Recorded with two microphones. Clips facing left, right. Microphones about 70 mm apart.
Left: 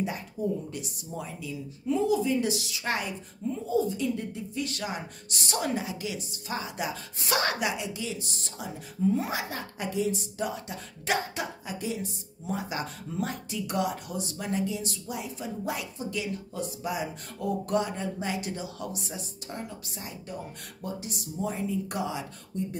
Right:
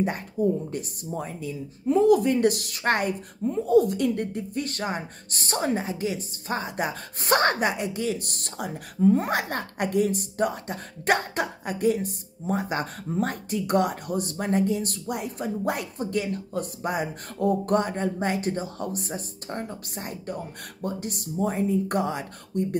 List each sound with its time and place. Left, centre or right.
0.7 s speech: right
3.6 s speech: right